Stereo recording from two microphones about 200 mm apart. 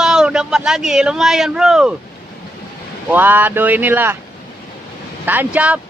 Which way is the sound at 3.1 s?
10° right (ahead or behind).